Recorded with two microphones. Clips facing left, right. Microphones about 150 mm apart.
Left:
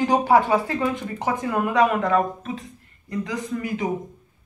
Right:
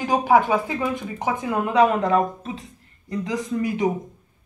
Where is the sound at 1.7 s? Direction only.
30° right (ahead or behind).